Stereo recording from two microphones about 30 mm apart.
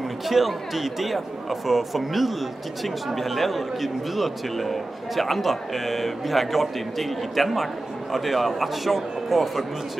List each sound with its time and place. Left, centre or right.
0.3 s speech: centre